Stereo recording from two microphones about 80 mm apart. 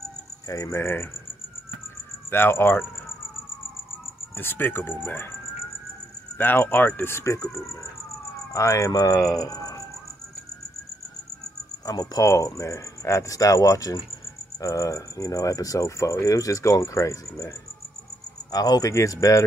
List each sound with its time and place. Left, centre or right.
0.5 s cricket: left
2.3 s speech: left
4.4 s speech: left
6.3 s speech: left
7.0 s cricket: left
8.5 s speech: left
9.4 s cricket: left
11.8 s speech: left
12.3 s cricket: left
14.6 s speech: left